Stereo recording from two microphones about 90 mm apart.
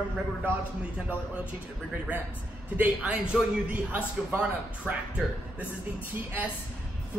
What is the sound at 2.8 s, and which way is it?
A man's voice, 10° right (ahead or behind).